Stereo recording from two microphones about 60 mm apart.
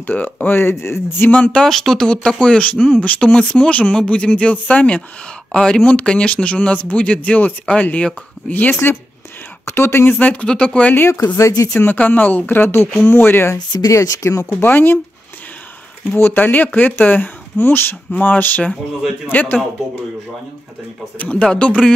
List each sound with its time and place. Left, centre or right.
0.0 s speech: left
1.3 s speech: centre
1.7 s speech: centre; by 8.7 s left
9.7 s speech: left
10.1 s speech: left
11.3 s speech: left
11.7 s speech: left
13.7 s speech: left
14.2 s speech: left
14.6 s speech: left
16.2 s speech: left
21.2 s speech: centre